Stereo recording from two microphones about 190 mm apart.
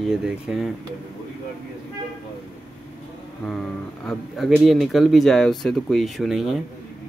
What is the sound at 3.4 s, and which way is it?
Speech, 5° left (ahead or behind).